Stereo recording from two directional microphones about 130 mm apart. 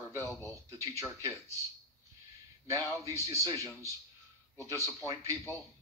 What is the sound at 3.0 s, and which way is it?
A man's voice, 25° right (ahead or behind).